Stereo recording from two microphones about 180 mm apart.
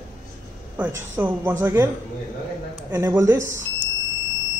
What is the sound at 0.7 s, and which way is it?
A woman's voice, 10° right (ahead or behind).